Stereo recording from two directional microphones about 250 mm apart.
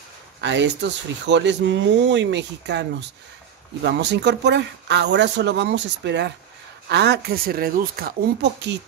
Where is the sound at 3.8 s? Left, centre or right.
Right.